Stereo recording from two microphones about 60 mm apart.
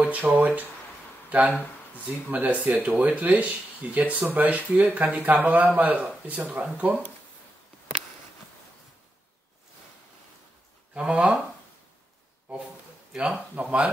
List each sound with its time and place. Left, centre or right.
0.0 s speech: right
11.0 s speech: centre
13.1 s speech: centre